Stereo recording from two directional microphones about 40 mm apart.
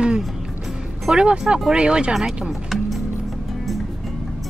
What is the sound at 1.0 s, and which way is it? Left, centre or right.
Speech, centre.